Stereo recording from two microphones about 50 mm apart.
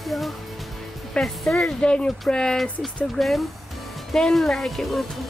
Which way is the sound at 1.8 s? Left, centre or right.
Centre.